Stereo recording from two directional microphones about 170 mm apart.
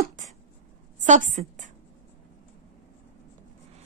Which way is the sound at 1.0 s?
45° right (ahead or behind).